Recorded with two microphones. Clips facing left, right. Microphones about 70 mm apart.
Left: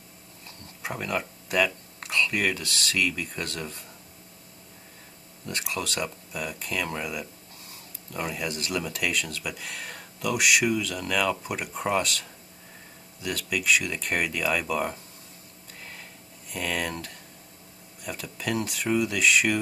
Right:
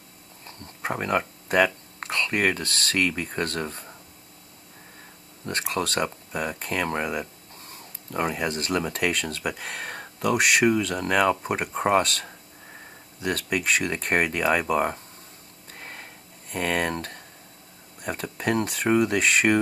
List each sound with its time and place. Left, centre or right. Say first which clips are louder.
0.5 s speech: right 5 dB; right
5.4 s speech: right 5 dB; right
15.8 s a sound: right 3 dB; right
18.0 s speech: right 5 dB; right